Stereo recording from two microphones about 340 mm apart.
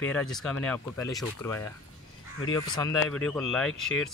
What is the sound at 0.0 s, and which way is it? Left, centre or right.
Speech, centre.